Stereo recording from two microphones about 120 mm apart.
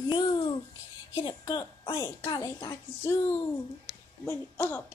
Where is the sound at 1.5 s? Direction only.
30° left (ahead or behind).